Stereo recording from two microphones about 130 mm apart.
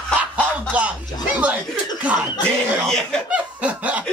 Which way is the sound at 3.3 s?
10° right (ahead or behind).